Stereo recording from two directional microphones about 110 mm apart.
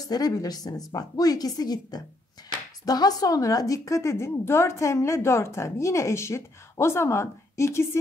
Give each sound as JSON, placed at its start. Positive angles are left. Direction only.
{"t": 0.1, "sound": "a woman's voice", "side_deg": 35}